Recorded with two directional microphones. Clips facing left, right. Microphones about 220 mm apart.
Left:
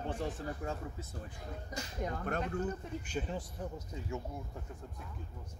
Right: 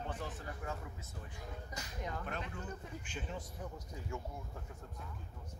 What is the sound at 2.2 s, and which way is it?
Speech, 50° left (ahead or behind).